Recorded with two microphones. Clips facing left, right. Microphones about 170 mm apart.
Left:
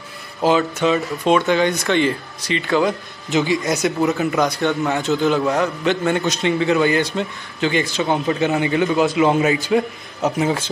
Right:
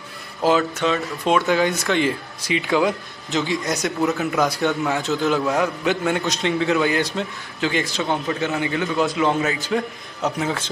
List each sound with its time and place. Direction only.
0.4 s speech: centre (ahead or behind)
8.1 s a man's voice: 15° left (ahead or behind)
8.9 s a man's voice: 5° left (ahead or behind)